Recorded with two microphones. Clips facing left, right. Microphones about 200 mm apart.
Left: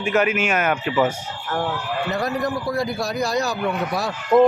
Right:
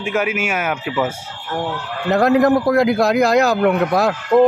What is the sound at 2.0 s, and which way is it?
Speech, 75° right (ahead or behind).